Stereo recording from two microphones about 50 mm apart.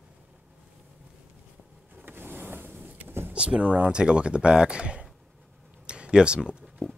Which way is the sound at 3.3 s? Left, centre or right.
Right.